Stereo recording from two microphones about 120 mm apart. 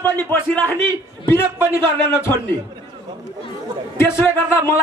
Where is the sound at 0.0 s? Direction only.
20° left (ahead or behind).